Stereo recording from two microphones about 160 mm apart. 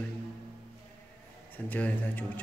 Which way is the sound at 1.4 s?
10° left (ahead or behind).